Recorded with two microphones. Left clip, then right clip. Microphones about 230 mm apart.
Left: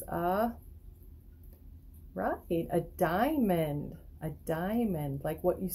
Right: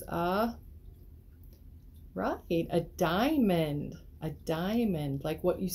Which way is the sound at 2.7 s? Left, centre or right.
Centre.